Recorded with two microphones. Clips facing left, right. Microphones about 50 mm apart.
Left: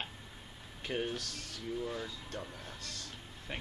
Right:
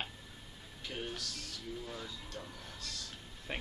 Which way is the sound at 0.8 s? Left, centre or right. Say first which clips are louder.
Left 5 dB; left.